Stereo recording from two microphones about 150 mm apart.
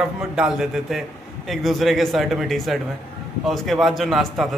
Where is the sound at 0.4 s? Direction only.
5° right (ahead or behind).